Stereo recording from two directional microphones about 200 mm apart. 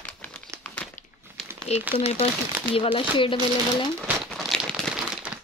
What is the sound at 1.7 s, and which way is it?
Speech, 30° left (ahead or behind).